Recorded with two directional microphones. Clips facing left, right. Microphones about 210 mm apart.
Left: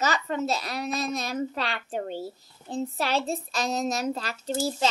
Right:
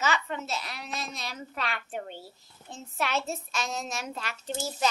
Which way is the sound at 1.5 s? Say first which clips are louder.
Left 4 dB; 30° left (ahead or behind).